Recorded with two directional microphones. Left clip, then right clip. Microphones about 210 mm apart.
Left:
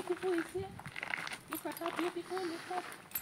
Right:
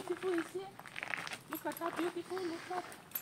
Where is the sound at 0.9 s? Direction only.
15° left (ahead or behind).